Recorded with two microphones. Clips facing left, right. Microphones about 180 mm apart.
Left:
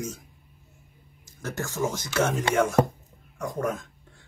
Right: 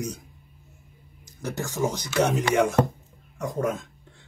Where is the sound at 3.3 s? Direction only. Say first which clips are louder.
Right 2 dB; 20° right (ahead or behind).